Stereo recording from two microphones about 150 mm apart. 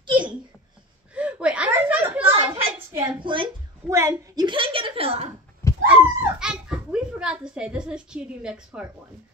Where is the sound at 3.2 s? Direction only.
35° right (ahead or behind).